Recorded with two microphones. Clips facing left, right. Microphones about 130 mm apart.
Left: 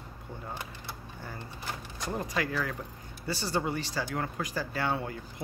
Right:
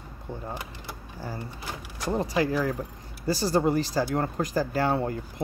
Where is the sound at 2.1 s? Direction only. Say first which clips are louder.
Right 7 dB; 30° right (ahead or behind).